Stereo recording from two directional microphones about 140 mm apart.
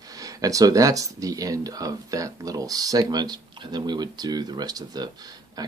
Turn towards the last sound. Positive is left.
turn(degrees=-30)  # may be behind; listen again after turning